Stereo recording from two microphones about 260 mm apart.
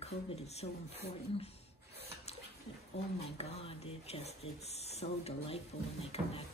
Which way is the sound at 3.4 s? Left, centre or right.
Left.